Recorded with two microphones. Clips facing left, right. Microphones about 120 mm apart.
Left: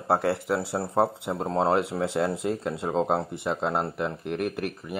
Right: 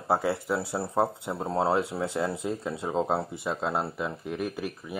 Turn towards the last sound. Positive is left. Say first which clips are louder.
# left 2 dB
turn(degrees=60)  # may be behind; listen again after turning